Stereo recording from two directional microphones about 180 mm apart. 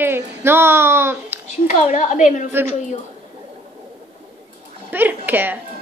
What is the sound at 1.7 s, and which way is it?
Speech, 40° left (ahead or behind).